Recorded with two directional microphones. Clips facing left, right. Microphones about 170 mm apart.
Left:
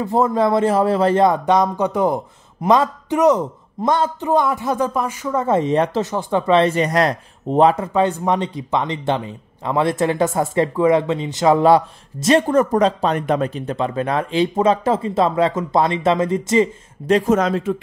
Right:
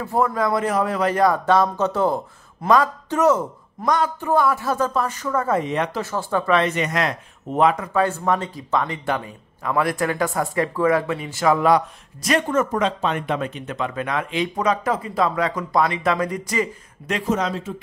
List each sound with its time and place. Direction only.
0.0 s speech: 20° left (ahead or behind)
17.3 s speech: 50° left (ahead or behind)